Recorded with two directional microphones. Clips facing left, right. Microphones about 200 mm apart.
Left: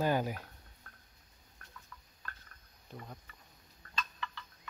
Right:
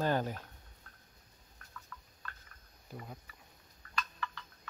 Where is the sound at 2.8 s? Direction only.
5° right (ahead or behind).